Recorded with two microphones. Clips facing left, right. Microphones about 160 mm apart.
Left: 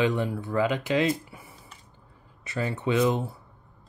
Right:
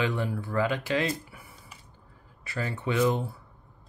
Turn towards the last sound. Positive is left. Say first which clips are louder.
# left 2 dB
turn(degrees=20)  # may be behind; listen again after turning